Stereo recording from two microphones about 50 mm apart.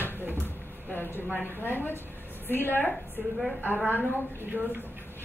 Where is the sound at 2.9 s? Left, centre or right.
Centre.